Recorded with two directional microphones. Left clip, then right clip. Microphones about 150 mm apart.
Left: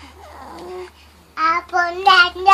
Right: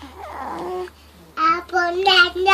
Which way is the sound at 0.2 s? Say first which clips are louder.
Right 7 dB; 35° right (ahead or behind).